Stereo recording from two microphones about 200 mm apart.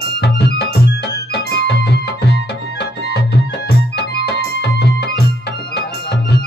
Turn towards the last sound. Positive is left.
turn(degrees=55)  # may be behind; listen again after turning